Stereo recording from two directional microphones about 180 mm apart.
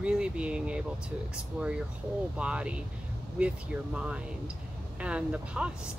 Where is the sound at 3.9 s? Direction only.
5° right (ahead or behind).